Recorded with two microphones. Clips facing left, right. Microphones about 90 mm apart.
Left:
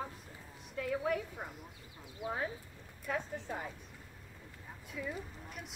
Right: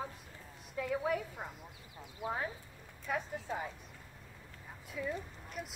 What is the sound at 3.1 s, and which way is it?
Speech, 5° right (ahead or behind).